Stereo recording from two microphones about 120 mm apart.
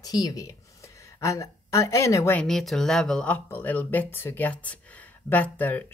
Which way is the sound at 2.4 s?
Centre (ahead or behind).